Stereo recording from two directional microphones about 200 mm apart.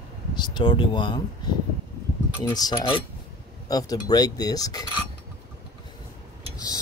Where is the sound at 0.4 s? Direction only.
20° left (ahead or behind).